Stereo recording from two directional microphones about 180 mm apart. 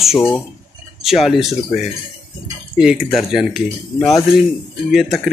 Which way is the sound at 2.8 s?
Centre (ahead or behind).